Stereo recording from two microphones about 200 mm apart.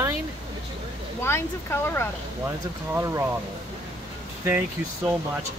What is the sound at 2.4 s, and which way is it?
Speech, 10° right (ahead or behind).